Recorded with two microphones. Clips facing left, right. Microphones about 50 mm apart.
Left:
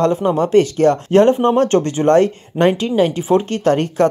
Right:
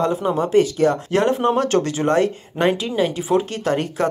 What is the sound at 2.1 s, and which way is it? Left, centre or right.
Speech, left.